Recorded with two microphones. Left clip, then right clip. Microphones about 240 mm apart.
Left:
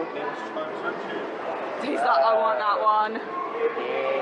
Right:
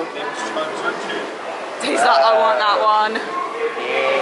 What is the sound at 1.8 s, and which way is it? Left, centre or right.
Speech, centre.